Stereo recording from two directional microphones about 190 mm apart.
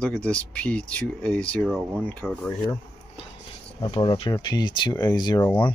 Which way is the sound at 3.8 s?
25° left (ahead or behind).